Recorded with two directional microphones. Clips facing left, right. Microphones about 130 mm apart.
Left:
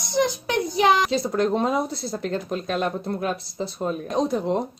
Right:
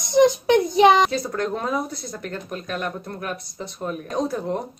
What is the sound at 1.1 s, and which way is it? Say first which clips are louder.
A woman's voice: left 3 dB; 25° left (ahead or behind).